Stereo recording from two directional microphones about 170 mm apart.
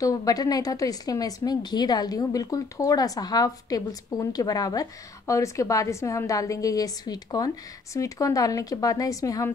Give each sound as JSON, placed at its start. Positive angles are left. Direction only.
{"t": 0.0, "sound": "a woman's voice", "side_deg": 20}